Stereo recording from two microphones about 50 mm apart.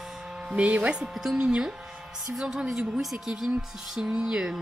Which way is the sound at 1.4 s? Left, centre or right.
Centre.